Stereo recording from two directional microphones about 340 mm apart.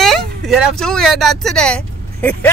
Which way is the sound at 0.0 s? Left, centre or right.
Centre.